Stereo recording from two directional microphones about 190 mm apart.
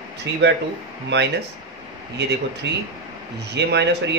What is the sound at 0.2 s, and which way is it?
Speech, 65° right (ahead or behind).